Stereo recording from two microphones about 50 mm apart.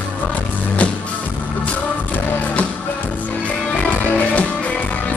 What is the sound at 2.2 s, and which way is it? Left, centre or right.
Music, left.